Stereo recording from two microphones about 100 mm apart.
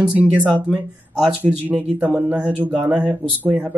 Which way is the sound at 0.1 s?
15° right (ahead or behind).